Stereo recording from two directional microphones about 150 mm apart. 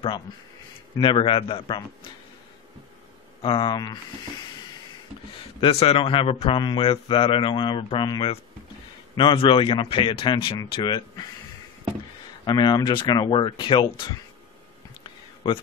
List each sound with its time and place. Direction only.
0.9 s a man's voice: 35° left (ahead or behind)
3.4 s speech: 30° left (ahead or behind)
5.6 s a man's voice: 40° left (ahead or behind)
12.4 s a man's voice: 30° left (ahead or behind)